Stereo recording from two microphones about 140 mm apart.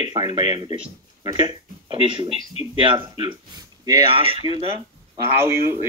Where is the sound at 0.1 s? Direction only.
35° right (ahead or behind).